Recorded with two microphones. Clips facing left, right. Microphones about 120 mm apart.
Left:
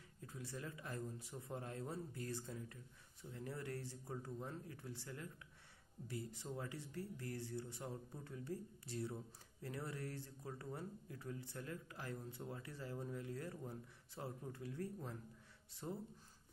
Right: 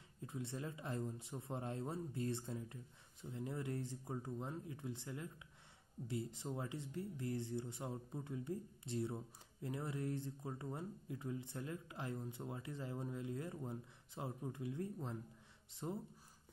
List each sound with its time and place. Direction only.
0.3 s speech: 25° right (ahead or behind)